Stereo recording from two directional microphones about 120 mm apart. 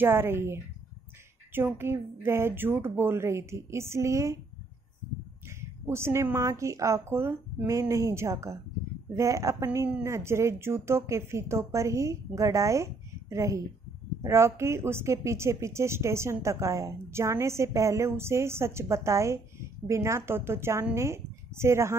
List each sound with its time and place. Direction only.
0.0 s a woman's voice: 20° right (ahead or behind)
1.8 s a woman's voice: 20° right (ahead or behind)
5.9 s a woman's voice: 20° right (ahead or behind)